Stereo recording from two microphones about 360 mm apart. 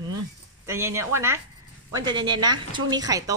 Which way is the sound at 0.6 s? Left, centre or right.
Centre.